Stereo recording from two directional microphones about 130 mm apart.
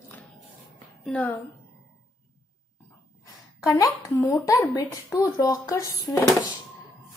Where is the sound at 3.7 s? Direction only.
25° left (ahead or behind).